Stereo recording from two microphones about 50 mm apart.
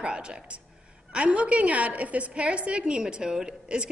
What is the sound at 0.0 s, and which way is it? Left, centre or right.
A woman's voice, centre.